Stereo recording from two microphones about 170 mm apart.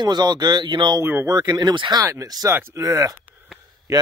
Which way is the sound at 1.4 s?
25° right (ahead or behind).